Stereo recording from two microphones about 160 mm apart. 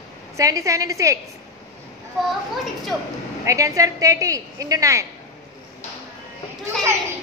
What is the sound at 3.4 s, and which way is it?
A woman's voice, 20° right (ahead or behind).